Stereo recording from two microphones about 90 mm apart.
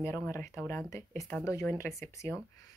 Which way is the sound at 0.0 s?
30° left (ahead or behind).